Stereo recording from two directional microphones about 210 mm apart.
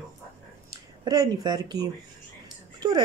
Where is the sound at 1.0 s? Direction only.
20° right (ahead or behind).